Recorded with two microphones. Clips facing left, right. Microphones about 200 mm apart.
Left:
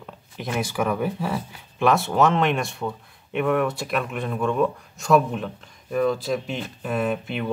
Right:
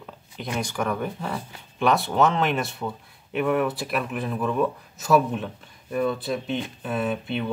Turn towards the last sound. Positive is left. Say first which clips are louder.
# left 1 dB
turn(degrees=0)  # may be behind; listen again after turning